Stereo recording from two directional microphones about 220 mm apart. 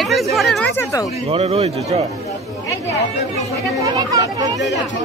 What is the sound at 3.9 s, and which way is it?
Speech, 15° right (ahead or behind).